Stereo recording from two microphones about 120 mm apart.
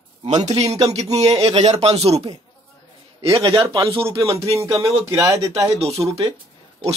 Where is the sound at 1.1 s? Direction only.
65° right (ahead or behind).